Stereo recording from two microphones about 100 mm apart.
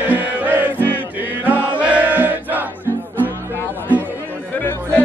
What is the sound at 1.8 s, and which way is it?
Battle cry, 15° right (ahead or behind).